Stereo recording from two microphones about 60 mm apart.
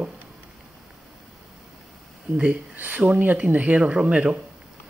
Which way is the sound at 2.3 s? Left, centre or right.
Centre.